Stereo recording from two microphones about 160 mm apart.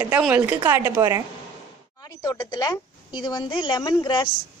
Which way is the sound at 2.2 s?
25° left (ahead or behind).